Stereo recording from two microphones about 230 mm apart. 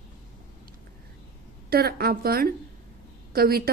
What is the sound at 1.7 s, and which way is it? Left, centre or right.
A woman's voice, right.